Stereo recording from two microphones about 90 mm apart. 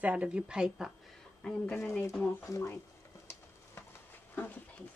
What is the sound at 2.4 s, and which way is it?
Speech, 30° left (ahead or behind).